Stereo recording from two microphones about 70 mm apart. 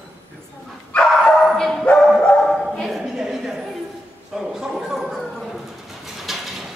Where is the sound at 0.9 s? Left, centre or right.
Centre.